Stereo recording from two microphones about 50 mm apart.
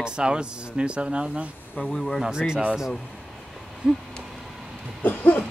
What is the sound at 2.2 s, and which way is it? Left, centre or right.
Speech, centre.